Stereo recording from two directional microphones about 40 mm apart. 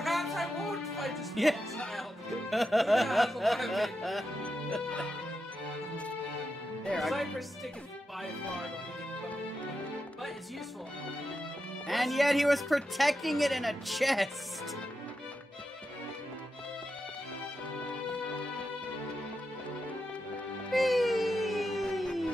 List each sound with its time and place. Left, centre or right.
0.0 s music: centre
2.5 s a woman's voice: centre
4.8 s music: left
7.0 s a woman's voice: centre
11.9 s a woman's voice: centre
20.7 s music: centre